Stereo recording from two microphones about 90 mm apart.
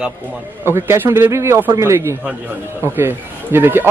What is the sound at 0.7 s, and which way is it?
Speech, 25° right (ahead or behind).